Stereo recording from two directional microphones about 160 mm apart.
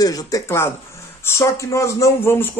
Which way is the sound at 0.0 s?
20° left (ahead or behind).